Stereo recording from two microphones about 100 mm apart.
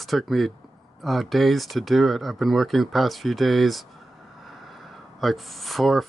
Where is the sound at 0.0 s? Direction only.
Centre (ahead or behind).